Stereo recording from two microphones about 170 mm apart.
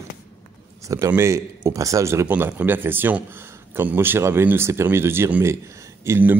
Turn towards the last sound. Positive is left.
turn(degrees=-15)  # may be behind; listen again after turning